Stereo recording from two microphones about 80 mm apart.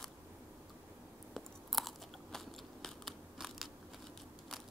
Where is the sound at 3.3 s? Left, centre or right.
Centre.